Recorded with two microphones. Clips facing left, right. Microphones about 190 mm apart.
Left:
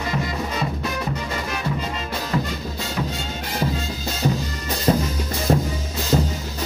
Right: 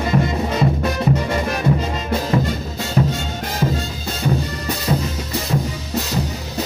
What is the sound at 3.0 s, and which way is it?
Music, 40° right (ahead or behind).